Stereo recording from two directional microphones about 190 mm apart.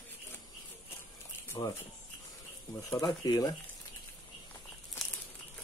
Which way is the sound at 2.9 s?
20° left (ahead or behind).